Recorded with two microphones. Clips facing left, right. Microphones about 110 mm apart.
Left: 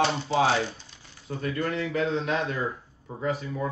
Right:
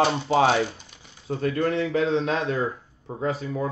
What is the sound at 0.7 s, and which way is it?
Typewriter, 15° right (ahead or behind).